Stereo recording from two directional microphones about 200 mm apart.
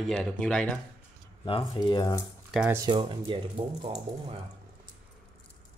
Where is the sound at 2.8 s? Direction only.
25° right (ahead or behind).